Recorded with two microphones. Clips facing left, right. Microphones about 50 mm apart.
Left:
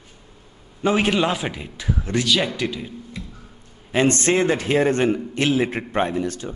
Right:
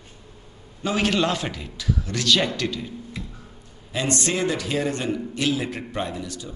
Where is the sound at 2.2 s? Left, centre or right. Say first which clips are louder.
Right 3 dB; centre.